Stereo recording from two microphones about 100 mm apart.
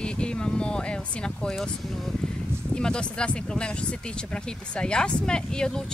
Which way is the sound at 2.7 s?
10° left (ahead or behind).